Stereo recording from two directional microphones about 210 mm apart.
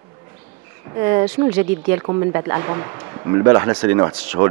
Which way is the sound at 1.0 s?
15° right (ahead or behind).